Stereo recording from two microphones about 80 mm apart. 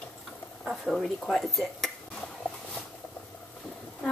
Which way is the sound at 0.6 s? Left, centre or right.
Centre.